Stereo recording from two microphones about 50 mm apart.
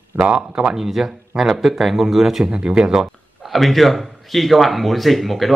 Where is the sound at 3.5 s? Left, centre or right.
Centre.